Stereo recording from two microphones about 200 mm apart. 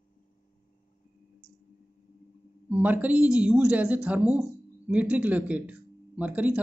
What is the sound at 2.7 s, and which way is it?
Speech, 10° right (ahead or behind).